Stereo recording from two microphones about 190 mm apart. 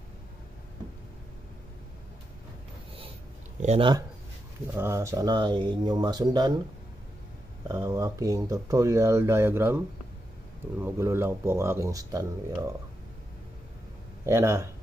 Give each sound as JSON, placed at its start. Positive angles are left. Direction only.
{"t": 3.6, "sound": "speech", "side_deg": -30}
{"t": 4.7, "sound": "speech", "side_deg": -15}
{"t": 7.6, "sound": "speech", "side_deg": -20}
{"t": 10.8, "sound": "speech", "side_deg": -15}
{"t": 14.2, "sound": "speech", "side_deg": -15}